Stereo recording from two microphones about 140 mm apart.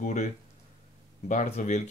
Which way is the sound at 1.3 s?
60° left (ahead or behind).